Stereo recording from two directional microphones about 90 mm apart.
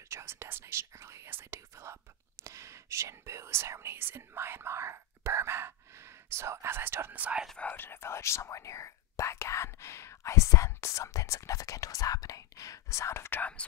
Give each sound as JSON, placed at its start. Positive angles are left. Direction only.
{"t": 0.1, "sound": "speech", "side_deg": -30}
{"t": 7.6, "sound": "speech", "side_deg": 25}
{"t": 13.4, "sound": "speech", "side_deg": 15}